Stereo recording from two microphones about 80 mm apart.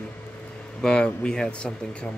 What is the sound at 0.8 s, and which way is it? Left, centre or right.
Speech, centre.